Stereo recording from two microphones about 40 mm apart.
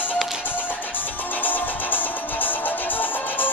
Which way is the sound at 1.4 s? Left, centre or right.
Left.